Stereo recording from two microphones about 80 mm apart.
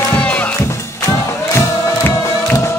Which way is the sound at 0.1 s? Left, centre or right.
Centre.